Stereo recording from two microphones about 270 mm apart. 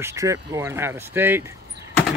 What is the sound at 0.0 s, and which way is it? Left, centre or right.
Speech, centre.